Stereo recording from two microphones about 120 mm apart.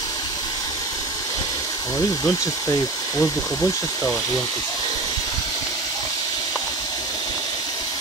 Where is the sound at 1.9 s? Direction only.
30° left (ahead or behind).